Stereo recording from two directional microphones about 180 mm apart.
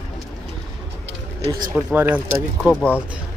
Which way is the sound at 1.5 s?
15° right (ahead or behind).